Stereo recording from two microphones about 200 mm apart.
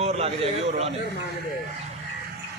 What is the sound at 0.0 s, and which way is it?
Speech, 30° right (ahead or behind).